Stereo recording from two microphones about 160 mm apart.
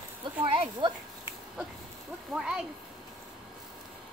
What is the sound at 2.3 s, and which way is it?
Speech, 5° right (ahead or behind).